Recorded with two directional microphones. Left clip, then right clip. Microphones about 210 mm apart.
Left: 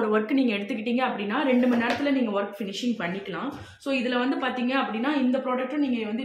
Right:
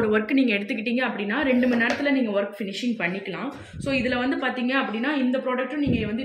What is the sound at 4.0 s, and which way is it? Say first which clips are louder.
A woman's voice: right 1 dB; 20° right (ahead or behind).